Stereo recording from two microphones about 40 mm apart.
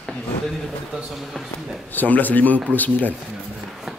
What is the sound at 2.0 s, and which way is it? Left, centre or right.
Speech, left.